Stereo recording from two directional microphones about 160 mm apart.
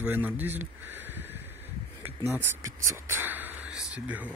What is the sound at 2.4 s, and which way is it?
Speech, 15° right (ahead or behind).